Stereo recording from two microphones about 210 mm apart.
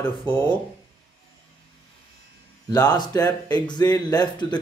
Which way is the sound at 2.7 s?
20° left (ahead or behind).